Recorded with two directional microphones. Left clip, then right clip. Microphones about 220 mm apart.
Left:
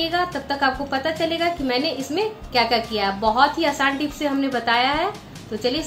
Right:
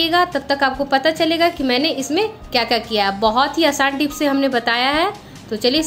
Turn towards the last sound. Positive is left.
turn(degrees=-45)  # may be behind; listen again after turning